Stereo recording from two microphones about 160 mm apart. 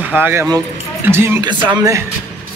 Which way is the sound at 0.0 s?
10° right (ahead or behind).